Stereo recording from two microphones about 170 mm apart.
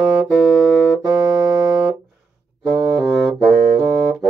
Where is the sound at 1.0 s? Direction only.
20° right (ahead or behind).